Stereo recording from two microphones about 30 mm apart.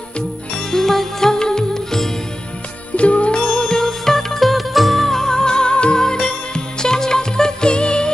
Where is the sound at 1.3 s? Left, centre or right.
Left.